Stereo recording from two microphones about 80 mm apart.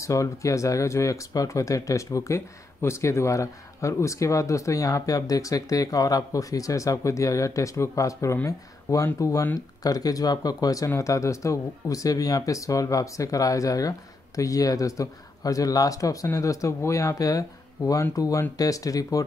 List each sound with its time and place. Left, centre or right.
0.0 s speech: left